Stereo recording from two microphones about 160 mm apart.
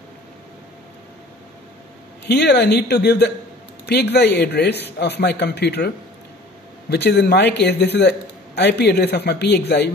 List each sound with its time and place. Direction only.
2.2 s a man's voice: 90° left